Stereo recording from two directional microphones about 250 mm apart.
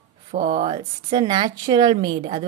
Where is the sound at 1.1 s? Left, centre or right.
Centre.